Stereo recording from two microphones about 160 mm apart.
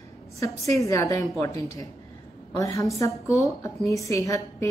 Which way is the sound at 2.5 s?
20° left (ahead or behind).